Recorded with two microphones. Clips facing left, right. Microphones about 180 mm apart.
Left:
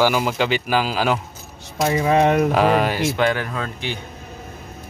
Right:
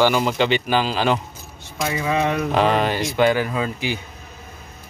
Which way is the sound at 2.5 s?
5° left (ahead or behind).